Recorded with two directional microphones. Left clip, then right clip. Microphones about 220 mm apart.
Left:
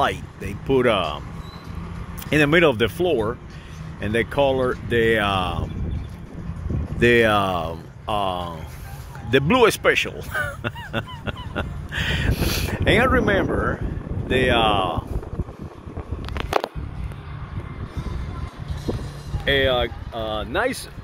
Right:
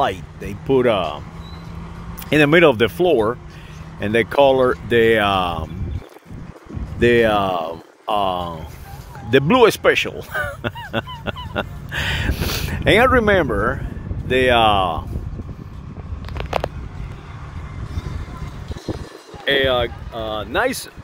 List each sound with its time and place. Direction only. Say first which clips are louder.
0.0 s speech: right 2 dB; 15° right (ahead or behind)
2.2 s speech: right 4 dB; 20° right (ahead or behind)
7.0 s speech: right 2 dB; 15° right (ahead or behind)
19.4 s speech: right 2 dB; 10° right (ahead or behind)